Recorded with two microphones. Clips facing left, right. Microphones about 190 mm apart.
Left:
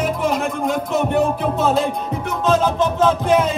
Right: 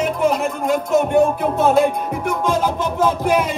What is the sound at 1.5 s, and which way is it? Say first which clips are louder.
Music: right 4 dB; 55° right (ahead or behind).